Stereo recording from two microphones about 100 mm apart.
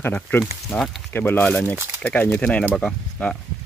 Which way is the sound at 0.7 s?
5° left (ahead or behind).